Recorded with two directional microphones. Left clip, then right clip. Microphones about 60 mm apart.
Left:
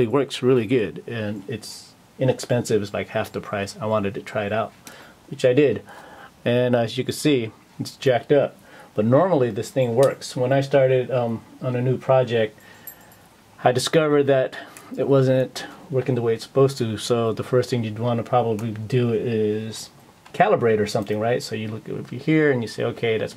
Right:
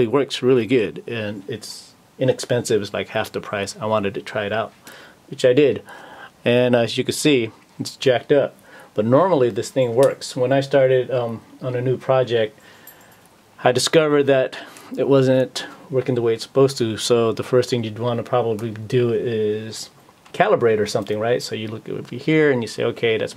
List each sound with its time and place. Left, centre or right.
0.0 s speech: right
13.6 s speech: right